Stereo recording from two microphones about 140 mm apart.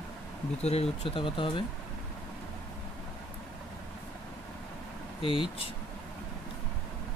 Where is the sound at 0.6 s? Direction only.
50° left (ahead or behind).